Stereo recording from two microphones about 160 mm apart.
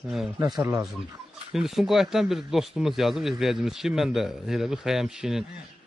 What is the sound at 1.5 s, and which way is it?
Speech, centre (ahead or behind).